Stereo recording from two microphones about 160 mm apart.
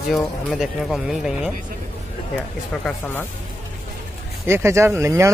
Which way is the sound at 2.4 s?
10° left (ahead or behind).